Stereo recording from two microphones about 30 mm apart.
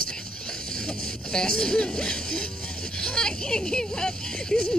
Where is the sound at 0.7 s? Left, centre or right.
Left.